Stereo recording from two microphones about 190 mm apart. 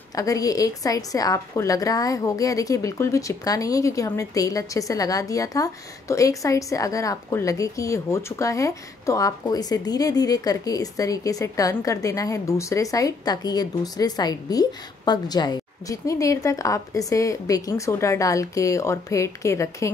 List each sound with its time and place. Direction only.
0.1 s a woman's voice: 20° left (ahead or behind)